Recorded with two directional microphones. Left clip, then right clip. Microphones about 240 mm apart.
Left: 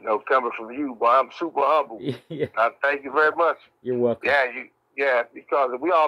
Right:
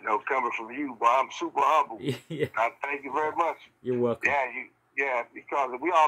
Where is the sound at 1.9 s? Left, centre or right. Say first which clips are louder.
Left 3 dB; centre.